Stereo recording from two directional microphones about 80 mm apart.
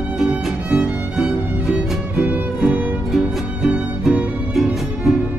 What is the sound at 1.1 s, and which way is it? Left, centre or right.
Music, centre.